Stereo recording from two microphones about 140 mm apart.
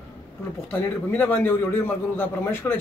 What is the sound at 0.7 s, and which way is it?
A man's voice, 15° left (ahead or behind).